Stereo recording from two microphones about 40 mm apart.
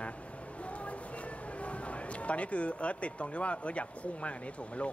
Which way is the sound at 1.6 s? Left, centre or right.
Left.